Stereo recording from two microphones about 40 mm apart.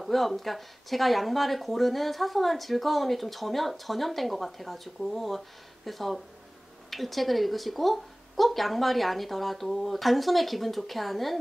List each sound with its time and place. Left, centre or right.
0.0 s speech: centre